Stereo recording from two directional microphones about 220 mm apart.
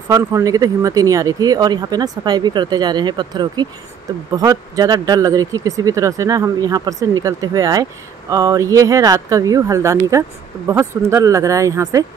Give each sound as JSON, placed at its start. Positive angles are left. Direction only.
{"t": 0.1, "sound": "speech", "side_deg": -15}